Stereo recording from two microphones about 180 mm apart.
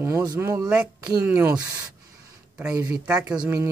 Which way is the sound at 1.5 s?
20° right (ahead or behind).